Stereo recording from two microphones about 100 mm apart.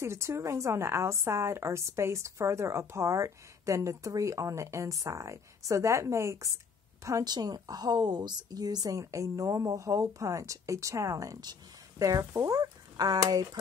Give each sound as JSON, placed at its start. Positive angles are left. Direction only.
{"t": 0.0, "sound": "a woman's voice", "side_deg": -25}